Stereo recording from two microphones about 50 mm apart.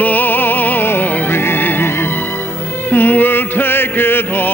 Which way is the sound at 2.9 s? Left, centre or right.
Left.